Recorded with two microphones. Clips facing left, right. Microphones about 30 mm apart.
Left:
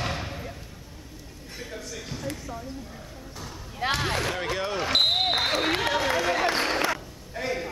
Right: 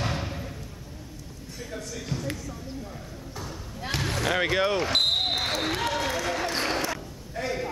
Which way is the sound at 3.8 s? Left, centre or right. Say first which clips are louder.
Left 6 dB; left.